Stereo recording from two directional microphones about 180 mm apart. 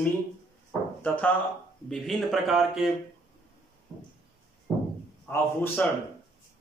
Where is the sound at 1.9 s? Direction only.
Centre (ahead or behind).